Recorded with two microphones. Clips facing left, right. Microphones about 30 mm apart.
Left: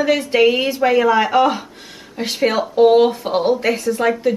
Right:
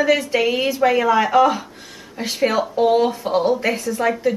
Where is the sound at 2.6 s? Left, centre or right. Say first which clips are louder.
Left 6 dB; left.